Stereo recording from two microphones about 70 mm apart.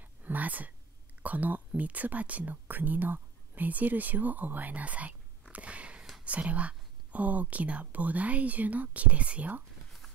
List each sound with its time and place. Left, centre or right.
0.0 s whispering: right
1.2 s speech: right
5.5 s a sound: centre
6.2 s speech: centre